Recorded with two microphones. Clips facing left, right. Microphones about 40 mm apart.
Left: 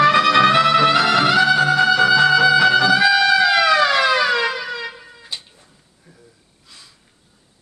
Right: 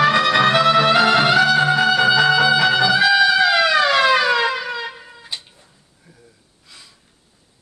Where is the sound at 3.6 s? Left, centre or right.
Right.